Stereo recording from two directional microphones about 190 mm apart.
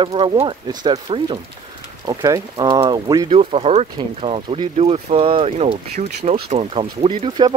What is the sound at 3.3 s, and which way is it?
Speech, 30° right (ahead or behind).